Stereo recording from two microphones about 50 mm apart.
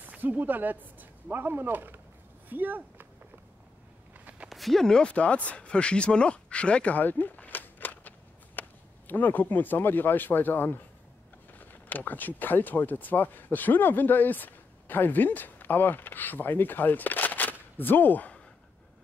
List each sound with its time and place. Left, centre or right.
0.0 s speech: right
4.5 s speech: centre; by 18.3 s left